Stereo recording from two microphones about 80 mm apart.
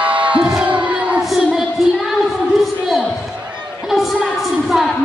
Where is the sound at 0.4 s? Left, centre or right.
Centre.